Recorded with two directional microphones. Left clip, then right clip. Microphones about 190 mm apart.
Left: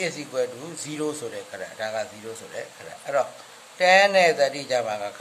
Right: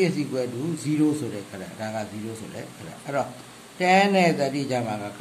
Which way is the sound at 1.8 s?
25° left (ahead or behind).